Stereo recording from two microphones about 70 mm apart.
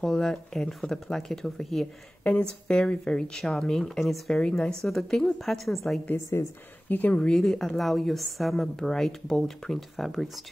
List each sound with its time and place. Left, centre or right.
0.0 s speech: centre
6.3 s speech: left
6.9 s speech: left
7.2 s speech: centre